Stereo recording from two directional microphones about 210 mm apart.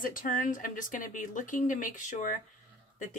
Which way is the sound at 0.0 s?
40° left (ahead or behind).